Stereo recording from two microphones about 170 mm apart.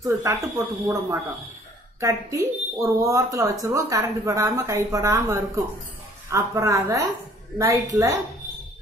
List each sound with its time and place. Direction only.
0.0 s a woman's voice: 20° right (ahead or behind)